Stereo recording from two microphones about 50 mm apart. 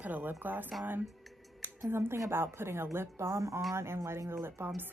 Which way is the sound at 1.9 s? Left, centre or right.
Right.